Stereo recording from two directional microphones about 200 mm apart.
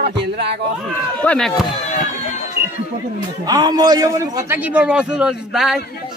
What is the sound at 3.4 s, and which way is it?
A man's voice, 20° right (ahead or behind).